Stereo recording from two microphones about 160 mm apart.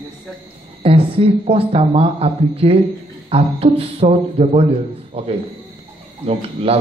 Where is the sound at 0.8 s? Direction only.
35° right (ahead or behind).